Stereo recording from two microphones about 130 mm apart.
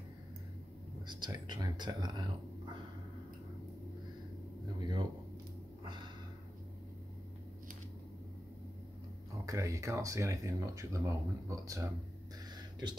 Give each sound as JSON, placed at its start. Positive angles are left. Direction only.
{"t": 1.0, "sound": "speech", "side_deg": -35}
{"t": 4.7, "sound": "speech", "side_deg": -30}
{"t": 9.5, "sound": "speech", "side_deg": -25}